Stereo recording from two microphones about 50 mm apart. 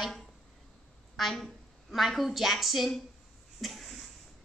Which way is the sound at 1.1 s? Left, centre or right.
Centre.